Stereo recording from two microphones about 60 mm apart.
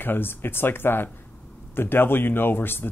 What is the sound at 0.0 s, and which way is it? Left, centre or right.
Speech, left.